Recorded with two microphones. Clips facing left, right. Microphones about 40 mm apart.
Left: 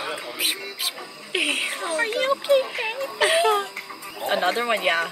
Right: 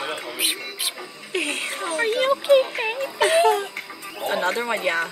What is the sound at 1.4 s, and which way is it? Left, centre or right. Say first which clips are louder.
Speech: left 4 dB; left.